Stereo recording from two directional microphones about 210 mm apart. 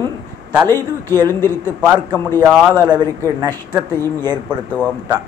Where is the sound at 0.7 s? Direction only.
10° left (ahead or behind).